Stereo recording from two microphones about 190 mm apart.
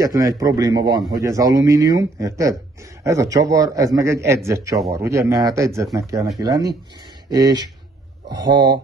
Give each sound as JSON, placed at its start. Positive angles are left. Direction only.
{"t": 0.0, "sound": "a man's voice", "side_deg": -20}